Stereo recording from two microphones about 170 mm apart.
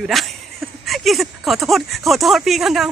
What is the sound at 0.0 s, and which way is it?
A woman's voice, centre (ahead or behind).